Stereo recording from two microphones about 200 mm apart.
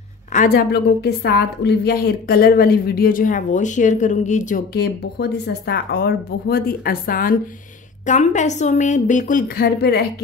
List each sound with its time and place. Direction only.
0.3 s a woman's voice: 45° left (ahead or behind)